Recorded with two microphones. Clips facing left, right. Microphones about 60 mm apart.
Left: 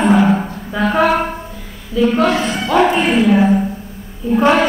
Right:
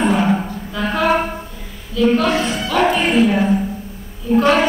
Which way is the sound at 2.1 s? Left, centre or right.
Left.